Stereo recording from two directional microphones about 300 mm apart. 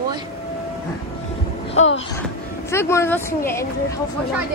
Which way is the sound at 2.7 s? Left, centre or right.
Centre.